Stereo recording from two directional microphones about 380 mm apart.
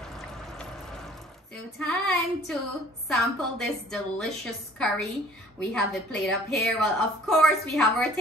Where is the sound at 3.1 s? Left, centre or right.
Centre.